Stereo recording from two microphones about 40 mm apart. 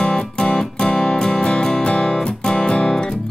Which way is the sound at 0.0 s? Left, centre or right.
Left.